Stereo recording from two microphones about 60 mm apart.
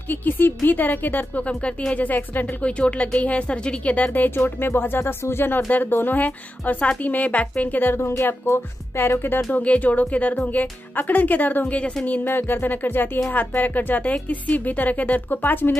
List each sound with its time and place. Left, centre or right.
0.1 s a woman's voice: left
2.8 s speech: centre
8.2 s a woman's voice: left
9.5 s speech: left
12.3 s a woman's voice: left